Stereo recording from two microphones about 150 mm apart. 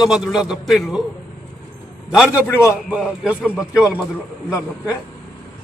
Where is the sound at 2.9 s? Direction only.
5° right (ahead or behind).